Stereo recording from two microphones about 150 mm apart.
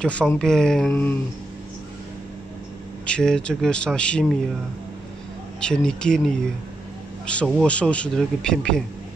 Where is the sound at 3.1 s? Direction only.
5° left (ahead or behind).